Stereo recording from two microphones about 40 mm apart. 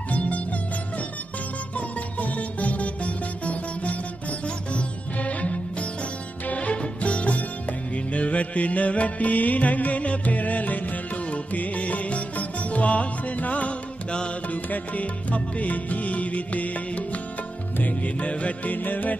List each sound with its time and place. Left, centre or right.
0.1 s music: left
1.8 s music: left
18.8 s music: left